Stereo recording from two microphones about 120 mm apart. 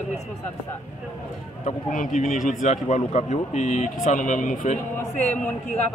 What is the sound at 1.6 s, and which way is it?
Speech, 80° left.